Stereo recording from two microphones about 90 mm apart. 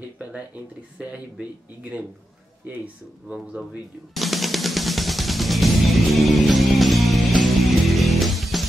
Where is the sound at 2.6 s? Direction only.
20° right (ahead or behind).